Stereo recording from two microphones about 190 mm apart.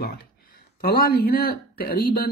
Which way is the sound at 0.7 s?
50° left (ahead or behind).